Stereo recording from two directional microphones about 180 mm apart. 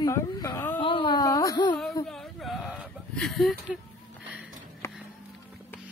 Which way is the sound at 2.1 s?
Centre (ahead or behind).